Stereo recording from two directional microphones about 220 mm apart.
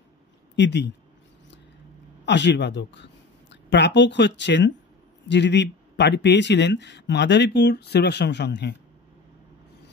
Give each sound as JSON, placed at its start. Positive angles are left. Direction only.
{"t": 0.6, "sound": "speech", "side_deg": 50}
{"t": 2.2, "sound": "a woman's voice", "side_deg": 50}